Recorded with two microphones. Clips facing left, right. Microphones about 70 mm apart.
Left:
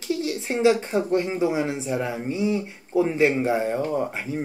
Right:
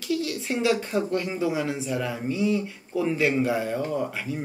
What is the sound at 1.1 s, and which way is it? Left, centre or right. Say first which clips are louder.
Speech: left 4 dB; left.